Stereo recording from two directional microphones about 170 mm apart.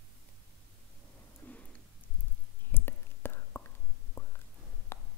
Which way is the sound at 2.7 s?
15° left (ahead or behind).